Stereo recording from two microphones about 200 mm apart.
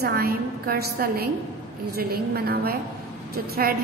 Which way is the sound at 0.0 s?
50° right (ahead or behind).